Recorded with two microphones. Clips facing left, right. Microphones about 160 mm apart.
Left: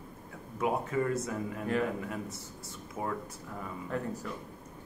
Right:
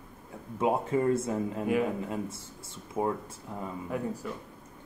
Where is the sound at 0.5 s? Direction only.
25° right (ahead or behind).